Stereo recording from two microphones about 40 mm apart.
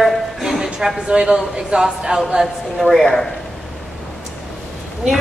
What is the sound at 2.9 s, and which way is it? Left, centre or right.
Speech, centre.